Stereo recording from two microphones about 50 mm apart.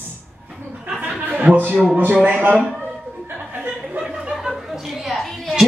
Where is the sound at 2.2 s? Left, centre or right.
Right.